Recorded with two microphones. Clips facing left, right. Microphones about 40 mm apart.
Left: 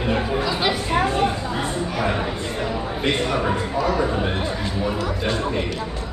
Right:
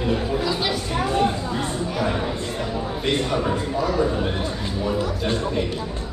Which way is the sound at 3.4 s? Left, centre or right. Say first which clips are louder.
Left 1 dB; left.